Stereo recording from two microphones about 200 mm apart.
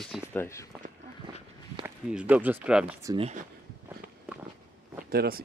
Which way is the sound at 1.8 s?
5° right (ahead or behind).